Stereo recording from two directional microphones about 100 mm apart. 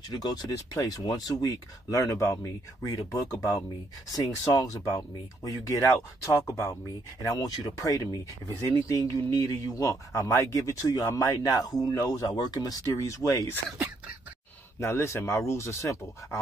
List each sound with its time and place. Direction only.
0.1 s a man's voice: 40° left (ahead or behind)
14.8 s speech: 25° left (ahead or behind)